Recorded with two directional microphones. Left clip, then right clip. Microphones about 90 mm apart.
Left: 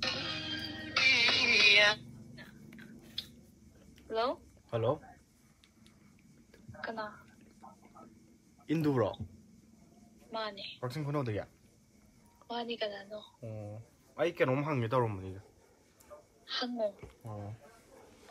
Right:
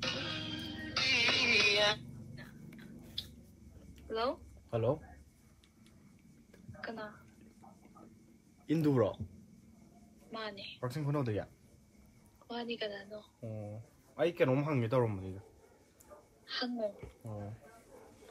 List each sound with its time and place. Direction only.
0.0 s music: 20° left (ahead or behind)
2.3 s whispering: 5° right (ahead or behind)
3.2 s squish: 20° left (ahead or behind)
4.1 s speech: 20° left (ahead or behind)
4.6 s speech: 45° left (ahead or behind)
8.6 s speech: 35° left (ahead or behind)
10.3 s speech: 30° left (ahead or behind)
12.4 s speech: 35° left (ahead or behind)
16.4 s a woman's voice: 30° left (ahead or behind)
17.2 s speech: 40° left (ahead or behind)